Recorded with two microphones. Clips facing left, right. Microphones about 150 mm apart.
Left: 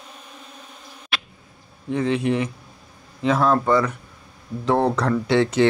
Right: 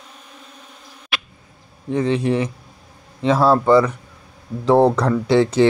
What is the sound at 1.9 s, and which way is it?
Speech, 30° right (ahead or behind).